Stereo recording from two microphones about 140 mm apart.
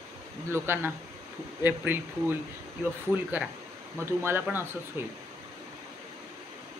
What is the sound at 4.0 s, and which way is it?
Speech, 15° right (ahead or behind).